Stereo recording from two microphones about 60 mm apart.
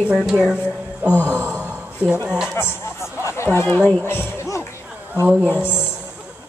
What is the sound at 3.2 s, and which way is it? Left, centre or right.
A woman's voice, left.